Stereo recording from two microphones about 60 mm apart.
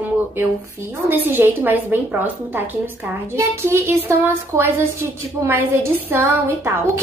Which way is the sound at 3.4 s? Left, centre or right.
Right.